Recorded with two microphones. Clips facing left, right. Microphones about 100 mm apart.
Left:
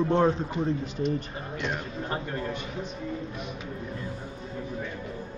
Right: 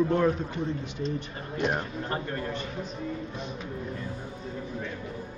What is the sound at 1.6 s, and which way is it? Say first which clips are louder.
Speech: right 5 dB; 45° right (ahead or behind).